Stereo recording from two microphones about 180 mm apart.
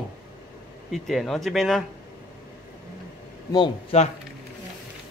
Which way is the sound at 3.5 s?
25° left (ahead or behind).